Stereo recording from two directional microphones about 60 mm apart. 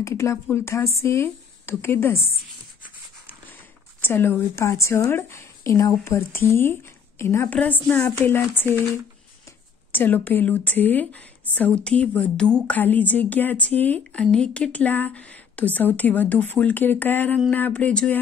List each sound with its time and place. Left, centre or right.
0.0 s a woman's voice: left
4.0 s a woman's voice: left
5.7 s a woman's voice: left
7.4 s a woman's voice: left
9.9 s a woman's voice: left
14.1 s speech: centre